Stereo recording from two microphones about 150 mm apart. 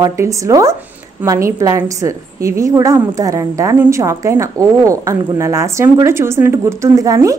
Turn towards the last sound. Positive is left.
turn(degrees=-20)  # may be behind; listen again after turning